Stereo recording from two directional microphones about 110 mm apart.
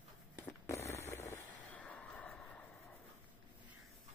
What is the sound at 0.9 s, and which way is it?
Vehicle, 25° left (ahead or behind).